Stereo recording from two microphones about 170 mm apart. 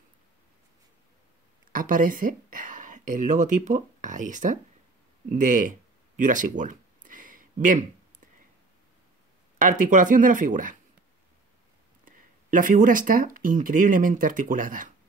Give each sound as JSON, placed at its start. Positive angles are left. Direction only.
{"t": 1.7, "sound": "speech", "side_deg": -50}
{"t": 5.3, "sound": "a sound", "side_deg": -50}
{"t": 9.6, "sound": "speech", "side_deg": -50}
{"t": 12.0, "sound": "speech", "side_deg": -55}